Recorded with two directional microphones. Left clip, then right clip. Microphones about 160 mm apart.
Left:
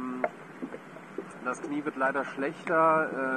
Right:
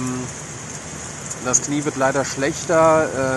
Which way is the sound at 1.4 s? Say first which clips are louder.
Right 11 dB; 15° right (ahead or behind).